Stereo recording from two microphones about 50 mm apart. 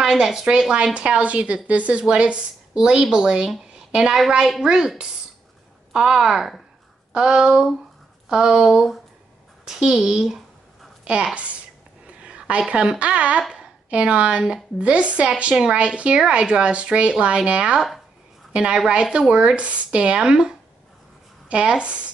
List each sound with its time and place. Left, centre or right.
0.0 s a woman's voice: centre
7.1 s a woman's voice: centre
12.2 s a sound: right
13.0 s speech: right
15.5 s a woman's voice: centre
17.7 s speech: centre
18.5 s a woman's voice: centre